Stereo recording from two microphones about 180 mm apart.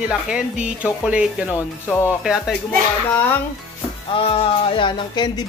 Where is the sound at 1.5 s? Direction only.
15° left (ahead or behind).